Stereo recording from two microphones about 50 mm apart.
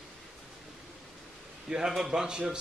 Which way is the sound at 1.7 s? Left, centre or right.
Centre.